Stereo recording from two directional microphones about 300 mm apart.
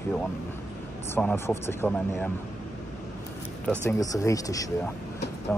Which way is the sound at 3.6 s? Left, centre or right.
Centre.